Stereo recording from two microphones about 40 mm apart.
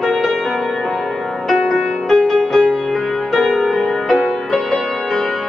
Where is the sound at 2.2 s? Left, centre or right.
Left.